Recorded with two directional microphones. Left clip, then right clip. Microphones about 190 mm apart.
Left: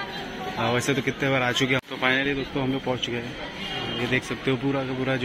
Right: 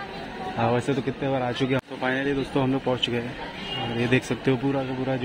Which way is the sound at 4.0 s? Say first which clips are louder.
Right 3 dB; 35° right (ahead or behind).